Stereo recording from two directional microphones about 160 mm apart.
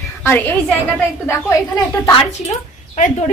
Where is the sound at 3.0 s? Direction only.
50° left (ahead or behind).